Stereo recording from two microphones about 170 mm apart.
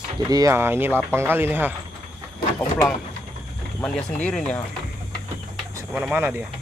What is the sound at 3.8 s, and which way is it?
Speech, 5° left (ahead or behind).